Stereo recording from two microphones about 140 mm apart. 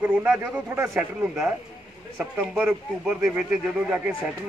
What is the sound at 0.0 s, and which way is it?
A man's voice, 10° right (ahead or behind).